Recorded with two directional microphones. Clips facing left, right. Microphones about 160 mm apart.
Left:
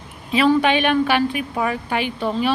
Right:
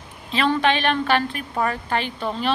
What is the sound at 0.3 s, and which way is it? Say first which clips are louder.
Speech: left 4 dB; 10° left (ahead or behind).